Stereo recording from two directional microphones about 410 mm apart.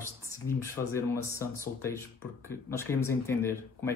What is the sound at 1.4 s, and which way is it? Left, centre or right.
Speech, centre.